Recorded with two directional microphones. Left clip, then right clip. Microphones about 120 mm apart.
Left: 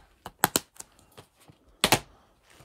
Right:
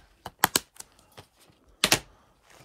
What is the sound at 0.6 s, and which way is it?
Computer keyboard, 45° left (ahead or behind).